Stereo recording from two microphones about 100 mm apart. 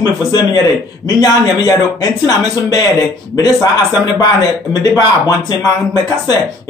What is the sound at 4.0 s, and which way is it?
Speech, 40° left (ahead or behind).